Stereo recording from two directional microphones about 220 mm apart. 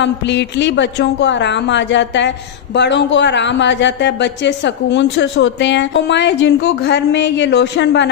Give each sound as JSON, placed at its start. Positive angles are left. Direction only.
{"t": 0.0, "sound": "a woman's voice", "side_deg": 50}